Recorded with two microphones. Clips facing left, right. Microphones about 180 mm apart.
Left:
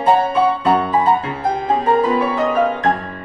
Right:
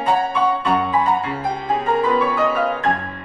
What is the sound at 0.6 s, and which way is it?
Music, 40° left (ahead or behind).